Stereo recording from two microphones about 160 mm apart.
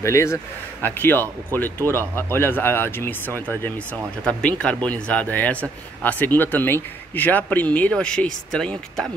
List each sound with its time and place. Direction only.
0.0 s speech: 15° left (ahead or behind)